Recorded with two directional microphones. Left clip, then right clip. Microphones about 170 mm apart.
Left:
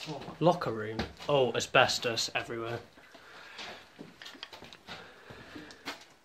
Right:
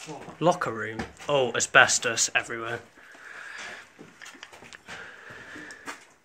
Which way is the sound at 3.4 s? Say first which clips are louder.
Right 4 dB; centre (ahead or behind).